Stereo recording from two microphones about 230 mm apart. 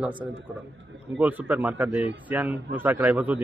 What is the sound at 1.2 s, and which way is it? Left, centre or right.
A man's voice, centre.